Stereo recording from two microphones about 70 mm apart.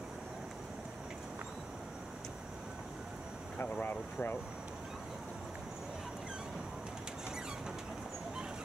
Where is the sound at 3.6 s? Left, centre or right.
Left.